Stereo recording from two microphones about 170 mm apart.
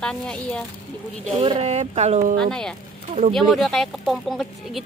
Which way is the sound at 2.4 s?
5° left (ahead or behind).